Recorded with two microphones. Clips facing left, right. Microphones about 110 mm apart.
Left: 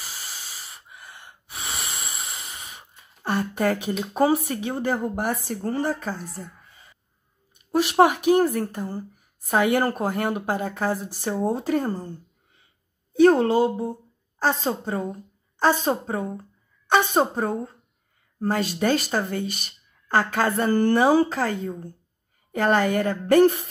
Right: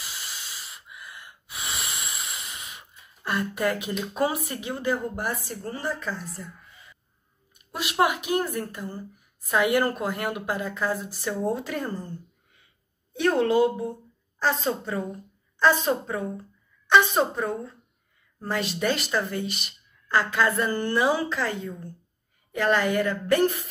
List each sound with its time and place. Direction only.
0.0 s a sound: 35° left (ahead or behind)
1.5 s breathing: 35° left (ahead or behind)
3.3 s a woman's voice: 40° left (ahead or behind)
7.9 s a woman's voice: 45° left (ahead or behind)
13.1 s a woman's voice: 35° left (ahead or behind)